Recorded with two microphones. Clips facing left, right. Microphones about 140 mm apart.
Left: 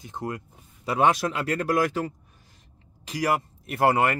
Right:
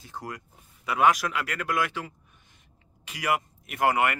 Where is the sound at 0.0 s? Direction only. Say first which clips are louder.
Left 6 dB; 25° left (ahead or behind).